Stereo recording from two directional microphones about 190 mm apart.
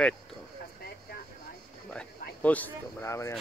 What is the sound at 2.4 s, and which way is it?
Speech, 10° left (ahead or behind).